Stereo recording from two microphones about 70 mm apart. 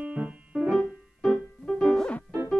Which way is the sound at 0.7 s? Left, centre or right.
Centre.